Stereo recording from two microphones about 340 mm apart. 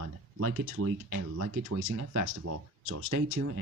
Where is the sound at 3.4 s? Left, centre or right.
Right.